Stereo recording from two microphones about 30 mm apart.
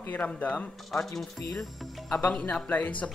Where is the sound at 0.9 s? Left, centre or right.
Centre.